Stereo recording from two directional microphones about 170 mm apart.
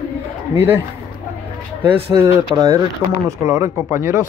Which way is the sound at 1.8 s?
15° right (ahead or behind).